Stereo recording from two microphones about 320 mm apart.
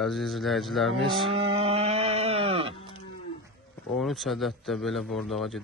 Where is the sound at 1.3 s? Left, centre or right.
Centre.